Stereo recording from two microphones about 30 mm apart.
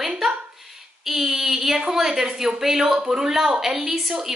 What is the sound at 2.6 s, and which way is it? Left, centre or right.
Speech, centre.